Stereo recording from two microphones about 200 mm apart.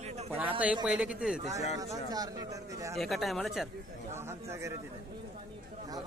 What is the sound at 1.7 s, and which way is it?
Speech, 20° right (ahead or behind).